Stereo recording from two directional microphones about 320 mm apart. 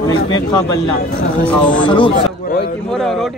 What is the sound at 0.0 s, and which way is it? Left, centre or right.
Speech, centre.